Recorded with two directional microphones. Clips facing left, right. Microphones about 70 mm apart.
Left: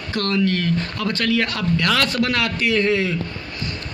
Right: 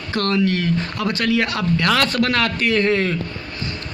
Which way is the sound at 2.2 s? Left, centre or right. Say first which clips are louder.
Right 2 dB; right.